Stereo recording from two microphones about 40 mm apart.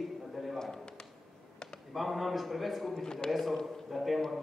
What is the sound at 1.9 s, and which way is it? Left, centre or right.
A man's voice, centre.